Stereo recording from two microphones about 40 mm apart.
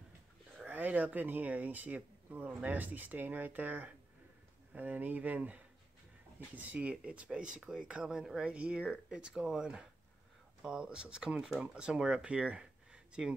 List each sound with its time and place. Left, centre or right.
0.7 s speech: right